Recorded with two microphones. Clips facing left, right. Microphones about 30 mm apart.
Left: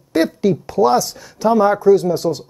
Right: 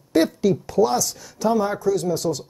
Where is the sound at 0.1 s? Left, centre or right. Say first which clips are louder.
Left 2 dB; left.